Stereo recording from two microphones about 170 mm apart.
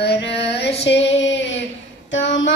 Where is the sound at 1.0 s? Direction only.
90° left.